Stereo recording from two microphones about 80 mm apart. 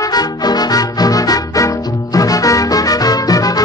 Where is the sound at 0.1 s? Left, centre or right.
Left.